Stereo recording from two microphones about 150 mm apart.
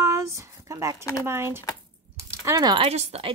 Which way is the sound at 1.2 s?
15° right (ahead or behind).